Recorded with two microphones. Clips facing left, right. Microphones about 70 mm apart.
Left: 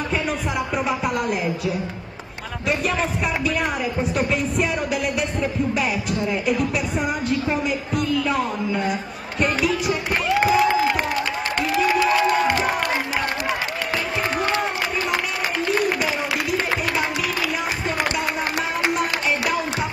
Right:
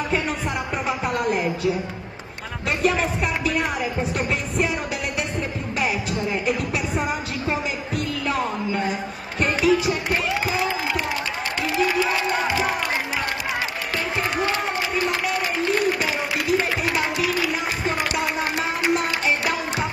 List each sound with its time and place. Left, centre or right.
0.8 s music: centre
2.8 s speech: centre
5.8 s music: centre
7.0 s speech: centre
9.4 s a sound: centre
11.7 s crowd: left
18.9 s music: centre